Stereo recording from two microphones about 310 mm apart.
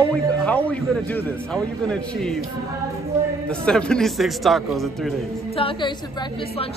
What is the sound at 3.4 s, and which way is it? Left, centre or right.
A man's voice, centre.